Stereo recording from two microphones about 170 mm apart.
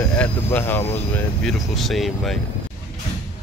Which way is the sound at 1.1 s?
Centre (ahead or behind).